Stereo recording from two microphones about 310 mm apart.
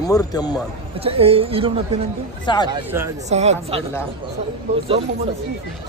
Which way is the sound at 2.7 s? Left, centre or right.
Centre.